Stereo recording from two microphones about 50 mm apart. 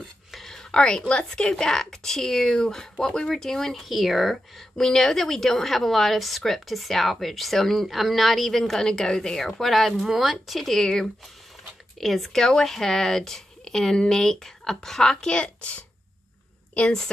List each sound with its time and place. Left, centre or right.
0.3 s a woman's voice: centre; by 17.0 s left